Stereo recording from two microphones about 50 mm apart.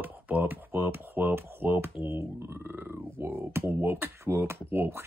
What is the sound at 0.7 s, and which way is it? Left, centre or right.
Speech, right.